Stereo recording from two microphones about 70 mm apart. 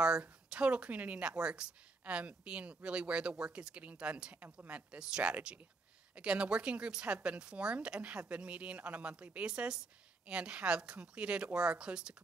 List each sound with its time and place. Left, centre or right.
0.0 s speech: centre